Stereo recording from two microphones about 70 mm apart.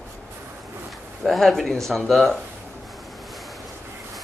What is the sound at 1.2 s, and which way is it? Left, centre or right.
A man's voice, centre.